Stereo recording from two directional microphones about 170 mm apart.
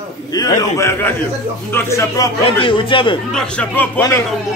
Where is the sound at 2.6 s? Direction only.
30° left (ahead or behind).